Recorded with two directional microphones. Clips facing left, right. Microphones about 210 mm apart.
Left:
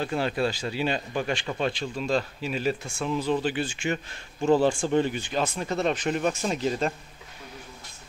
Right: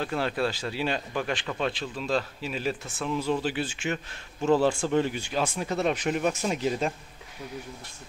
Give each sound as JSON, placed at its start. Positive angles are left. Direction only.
{"t": 0.0, "sound": "speech", "side_deg": 0}